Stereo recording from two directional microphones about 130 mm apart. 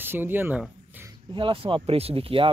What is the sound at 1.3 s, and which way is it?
Speech, 40° right (ahead or behind).